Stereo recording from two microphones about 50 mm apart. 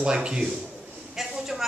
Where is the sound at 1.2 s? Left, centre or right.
Centre.